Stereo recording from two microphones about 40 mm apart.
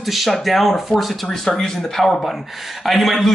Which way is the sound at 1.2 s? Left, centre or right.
Centre.